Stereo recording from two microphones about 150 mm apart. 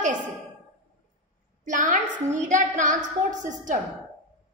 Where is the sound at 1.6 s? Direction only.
60° right (ahead or behind).